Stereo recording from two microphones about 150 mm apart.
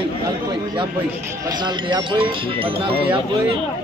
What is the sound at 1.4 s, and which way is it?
Speech, 30° right (ahead or behind).